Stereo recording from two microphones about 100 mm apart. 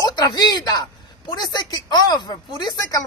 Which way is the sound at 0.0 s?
45° left (ahead or behind).